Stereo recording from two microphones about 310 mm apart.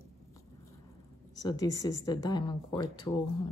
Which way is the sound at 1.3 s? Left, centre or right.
Centre.